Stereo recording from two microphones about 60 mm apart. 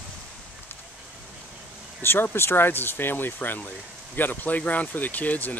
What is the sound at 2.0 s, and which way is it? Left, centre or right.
Speech, left.